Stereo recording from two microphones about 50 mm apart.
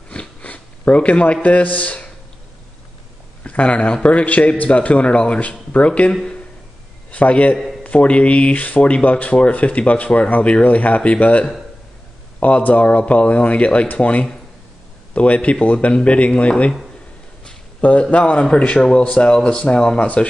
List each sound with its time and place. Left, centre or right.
0.1 s a sound: left
3.4 s a man's voice: left
7.5 s a man's voice: centre
7.8 s a man's voice: left
17.7 s a man's voice: left